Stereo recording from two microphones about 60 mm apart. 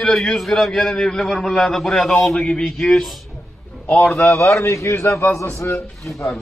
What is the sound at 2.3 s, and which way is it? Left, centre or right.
Speech, centre.